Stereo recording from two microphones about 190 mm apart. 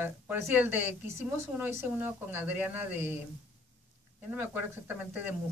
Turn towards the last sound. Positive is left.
turn(degrees=-10)  # may be behind; listen again after turning